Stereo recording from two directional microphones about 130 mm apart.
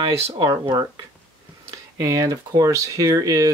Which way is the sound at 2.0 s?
25° right (ahead or behind).